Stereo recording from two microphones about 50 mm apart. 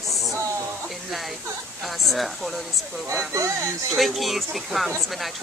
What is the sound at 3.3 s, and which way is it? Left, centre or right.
Speech, right.